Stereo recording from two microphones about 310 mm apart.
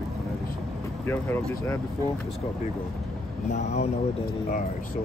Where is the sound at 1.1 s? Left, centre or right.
Centre.